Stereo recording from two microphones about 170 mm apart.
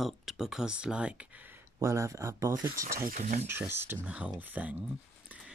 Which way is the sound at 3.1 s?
45° right (ahead or behind).